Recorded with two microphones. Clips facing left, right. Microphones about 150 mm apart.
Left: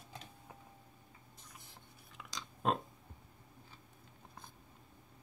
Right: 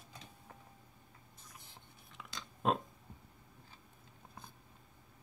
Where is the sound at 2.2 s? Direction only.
Centre (ahead or behind).